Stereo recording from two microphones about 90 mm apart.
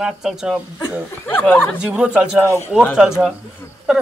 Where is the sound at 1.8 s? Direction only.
15° right (ahead or behind).